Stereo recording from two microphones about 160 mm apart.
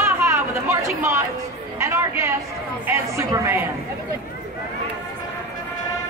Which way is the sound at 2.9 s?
15° right (ahead or behind).